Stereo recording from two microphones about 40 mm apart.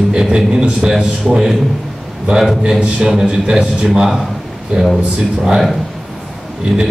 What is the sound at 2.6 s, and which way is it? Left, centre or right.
A man's voice, right.